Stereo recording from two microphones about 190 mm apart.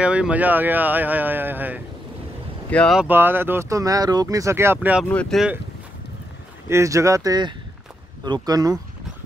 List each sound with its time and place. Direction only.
0.0 s speech: 5° right (ahead or behind)
2.7 s speech: 5° left (ahead or behind)
3.0 s speech: 10° right (ahead or behind)
5.0 s speech: 5° left (ahead or behind)
6.7 s speech: 15° right (ahead or behind)